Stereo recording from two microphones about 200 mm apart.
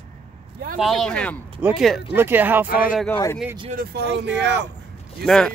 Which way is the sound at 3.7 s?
50° right (ahead or behind).